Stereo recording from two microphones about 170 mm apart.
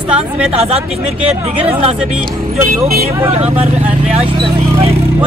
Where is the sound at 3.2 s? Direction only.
40° right (ahead or behind).